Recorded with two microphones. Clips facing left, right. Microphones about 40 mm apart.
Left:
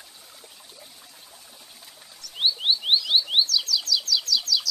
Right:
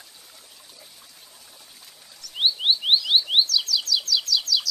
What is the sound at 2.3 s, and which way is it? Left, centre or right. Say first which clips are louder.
Chirp: right 2 dB; centre.